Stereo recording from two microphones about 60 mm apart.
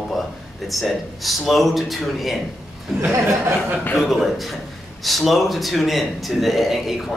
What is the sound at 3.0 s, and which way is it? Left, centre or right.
Speech, right.